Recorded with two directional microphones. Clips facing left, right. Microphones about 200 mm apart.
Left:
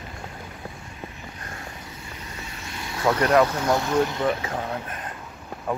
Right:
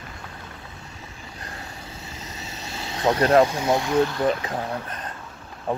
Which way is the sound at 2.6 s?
25° right (ahead or behind).